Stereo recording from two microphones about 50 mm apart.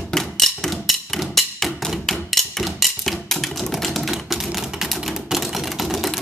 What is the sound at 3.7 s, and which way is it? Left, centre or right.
Typewriter, centre.